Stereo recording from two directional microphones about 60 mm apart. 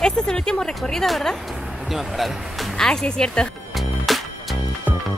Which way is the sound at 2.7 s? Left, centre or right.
Centre.